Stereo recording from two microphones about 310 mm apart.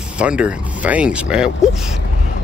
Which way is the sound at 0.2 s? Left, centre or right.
Centre.